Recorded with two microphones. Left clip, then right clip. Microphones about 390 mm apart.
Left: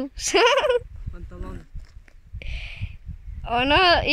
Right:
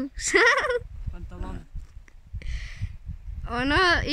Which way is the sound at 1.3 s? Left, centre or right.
Centre.